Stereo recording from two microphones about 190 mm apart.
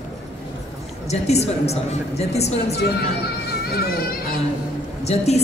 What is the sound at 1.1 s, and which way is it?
A woman's voice, 35° left (ahead or behind).